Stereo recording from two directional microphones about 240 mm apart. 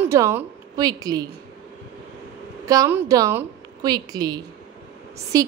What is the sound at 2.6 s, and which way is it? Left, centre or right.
A woman's voice, centre.